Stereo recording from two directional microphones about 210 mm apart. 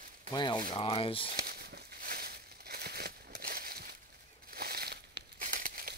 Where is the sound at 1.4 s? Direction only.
45° right (ahead or behind).